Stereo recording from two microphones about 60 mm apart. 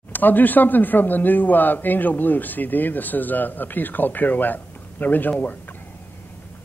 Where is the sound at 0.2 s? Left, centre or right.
Left.